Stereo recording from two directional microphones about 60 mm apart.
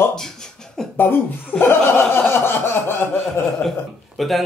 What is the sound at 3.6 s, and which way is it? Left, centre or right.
Speech, left.